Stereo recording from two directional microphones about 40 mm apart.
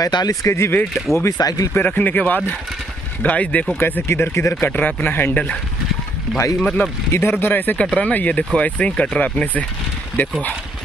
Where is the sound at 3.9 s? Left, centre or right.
Left.